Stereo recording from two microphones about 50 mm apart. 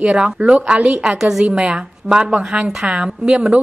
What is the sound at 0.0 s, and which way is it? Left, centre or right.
A woman's voice, centre.